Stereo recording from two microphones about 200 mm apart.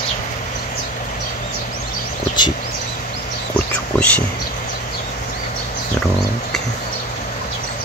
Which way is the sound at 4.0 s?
5° left (ahead or behind).